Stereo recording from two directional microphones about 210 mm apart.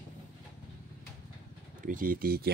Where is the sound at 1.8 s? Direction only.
40° right (ahead or behind).